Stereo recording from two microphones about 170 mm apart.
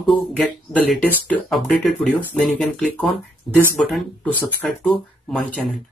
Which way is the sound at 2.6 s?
5° left (ahead or behind).